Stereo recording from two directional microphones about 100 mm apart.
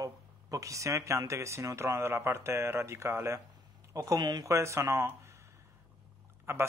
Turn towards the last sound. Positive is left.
turn(degrees=-25)  # may be behind; listen again after turning